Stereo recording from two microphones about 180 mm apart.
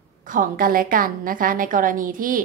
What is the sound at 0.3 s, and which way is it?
A woman's voice, 50° right (ahead or behind).